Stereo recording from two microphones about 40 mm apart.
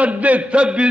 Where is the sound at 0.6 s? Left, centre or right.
Right.